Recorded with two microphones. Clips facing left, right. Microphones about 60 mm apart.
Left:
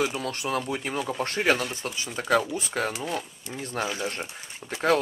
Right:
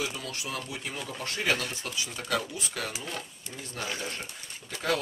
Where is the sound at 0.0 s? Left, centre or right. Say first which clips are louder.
Left 7 dB; left.